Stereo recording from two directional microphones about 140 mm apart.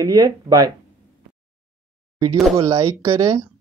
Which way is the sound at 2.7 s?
25° right (ahead or behind).